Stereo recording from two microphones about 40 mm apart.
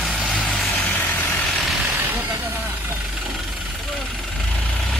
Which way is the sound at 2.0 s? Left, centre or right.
Right.